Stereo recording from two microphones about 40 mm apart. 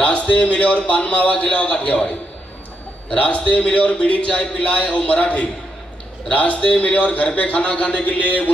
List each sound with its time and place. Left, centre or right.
0.0 s a man's voice: left